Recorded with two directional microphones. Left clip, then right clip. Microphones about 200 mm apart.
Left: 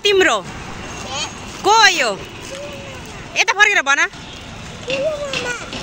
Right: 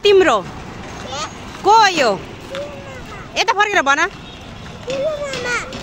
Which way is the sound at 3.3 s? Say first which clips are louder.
Left 2 dB; 5° right (ahead or behind).